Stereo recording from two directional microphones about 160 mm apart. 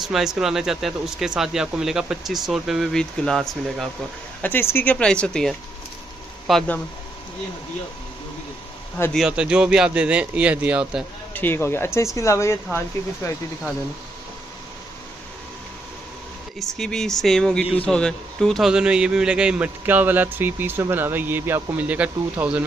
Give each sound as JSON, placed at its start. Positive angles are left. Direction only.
{"t": 0.0, "sound": "speech", "side_deg": 0}
{"t": 4.4, "sound": "speech", "side_deg": 15}
{"t": 8.9, "sound": "speech", "side_deg": 10}
{"t": 9.2, "sound": "speech", "side_deg": -5}
{"t": 11.3, "sound": "speech", "side_deg": 15}
{"t": 16.5, "sound": "speech", "side_deg": 5}